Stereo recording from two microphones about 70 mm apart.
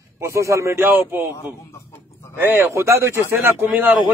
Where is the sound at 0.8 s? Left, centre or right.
Right.